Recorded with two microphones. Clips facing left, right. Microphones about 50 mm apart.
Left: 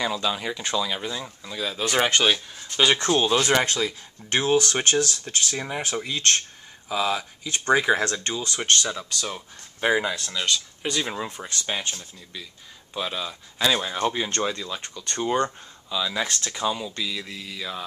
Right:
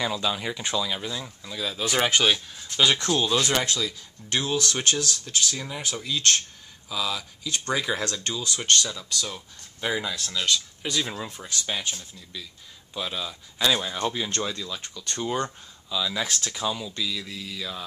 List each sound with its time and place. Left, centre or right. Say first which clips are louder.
0.0 s speech: left 1 dB; centre
3.0 s speech: left 3 dB; left
8.4 s speech: even; centre
10.1 s speech: even; centre
11.2 s speech: left 1 dB; centre
12.0 s speech: left 1 dB; centre